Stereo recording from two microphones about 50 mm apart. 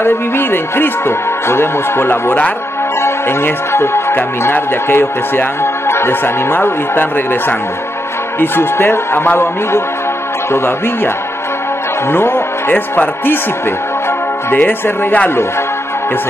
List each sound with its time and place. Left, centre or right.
0.0 s speech: left
12.1 s music: left
12.7 s speech: left
14.5 s speech: left